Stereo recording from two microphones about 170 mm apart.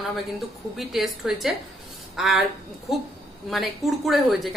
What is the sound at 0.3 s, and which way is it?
A woman's voice, centre (ahead or behind).